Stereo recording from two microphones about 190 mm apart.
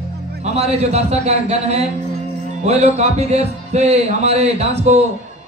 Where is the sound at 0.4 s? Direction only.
35° right (ahead or behind).